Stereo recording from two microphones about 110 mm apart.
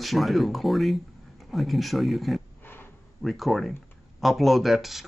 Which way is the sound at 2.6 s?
20° left (ahead or behind).